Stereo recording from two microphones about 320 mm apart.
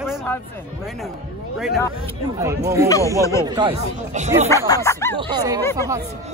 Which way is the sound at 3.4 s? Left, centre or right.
Centre.